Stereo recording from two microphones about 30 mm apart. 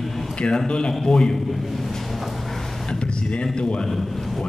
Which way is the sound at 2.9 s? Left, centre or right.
Left.